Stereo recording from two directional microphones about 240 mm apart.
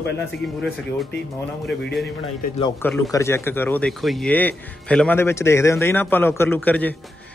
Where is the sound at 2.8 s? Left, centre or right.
Centre.